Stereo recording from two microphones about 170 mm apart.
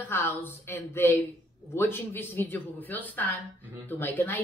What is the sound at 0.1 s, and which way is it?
Speech, 15° left (ahead or behind).